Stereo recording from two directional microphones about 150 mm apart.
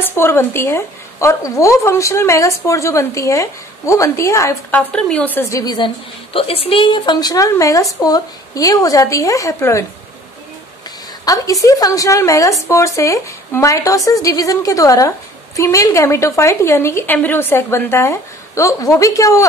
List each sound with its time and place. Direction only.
0.0 s a woman's voice: 15° left (ahead or behind)
5.6 s a woman's voice: 25° left (ahead or behind)
6.3 s a woman's voice: 40° left (ahead or behind); by 9.8 s 20° left (ahead or behind)
11.2 s a woman's voice: 20° left (ahead or behind)